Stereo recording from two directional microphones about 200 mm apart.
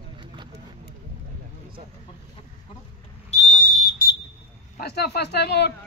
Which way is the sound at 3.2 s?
40° left (ahead or behind).